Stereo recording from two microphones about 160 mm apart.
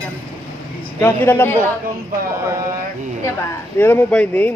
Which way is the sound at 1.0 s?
15° left (ahead or behind).